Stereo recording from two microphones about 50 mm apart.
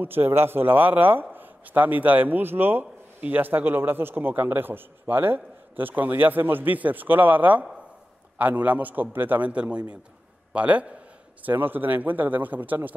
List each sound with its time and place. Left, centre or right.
0.0 s a man's voice: right
9.4 s speech: right
11.4 s a man's voice: right